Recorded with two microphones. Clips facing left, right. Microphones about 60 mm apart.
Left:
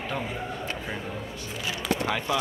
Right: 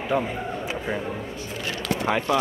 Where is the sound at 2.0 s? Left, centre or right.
Centre.